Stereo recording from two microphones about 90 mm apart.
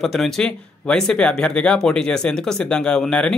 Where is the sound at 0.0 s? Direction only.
5° left (ahead or behind).